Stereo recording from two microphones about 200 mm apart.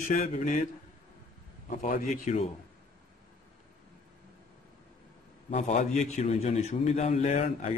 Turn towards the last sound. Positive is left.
turn(degrees=35)  # may be behind; listen again after turning